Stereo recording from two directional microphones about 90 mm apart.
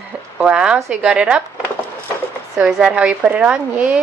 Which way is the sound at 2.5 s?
10° right (ahead or behind).